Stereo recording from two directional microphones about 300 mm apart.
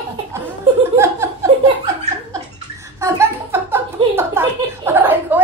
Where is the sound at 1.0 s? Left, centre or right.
Centre.